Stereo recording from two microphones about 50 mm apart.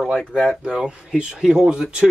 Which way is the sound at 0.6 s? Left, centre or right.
Centre.